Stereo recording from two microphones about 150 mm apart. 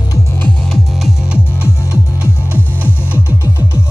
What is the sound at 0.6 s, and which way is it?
Music, centre (ahead or behind).